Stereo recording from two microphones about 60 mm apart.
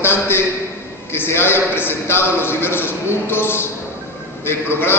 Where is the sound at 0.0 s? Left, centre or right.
Left.